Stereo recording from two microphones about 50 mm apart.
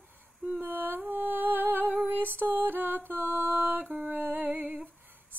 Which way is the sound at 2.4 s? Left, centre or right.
Right.